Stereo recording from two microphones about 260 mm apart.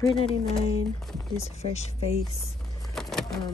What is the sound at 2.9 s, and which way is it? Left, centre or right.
Vehicle, centre.